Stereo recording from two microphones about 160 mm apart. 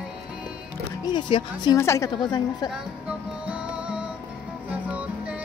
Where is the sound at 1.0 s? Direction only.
30° left (ahead or behind).